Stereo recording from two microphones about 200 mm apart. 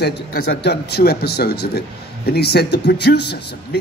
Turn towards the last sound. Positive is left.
turn(degrees=55)  # may be behind; listen again after turning